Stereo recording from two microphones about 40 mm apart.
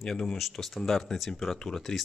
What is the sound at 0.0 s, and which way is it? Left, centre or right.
Speech, centre.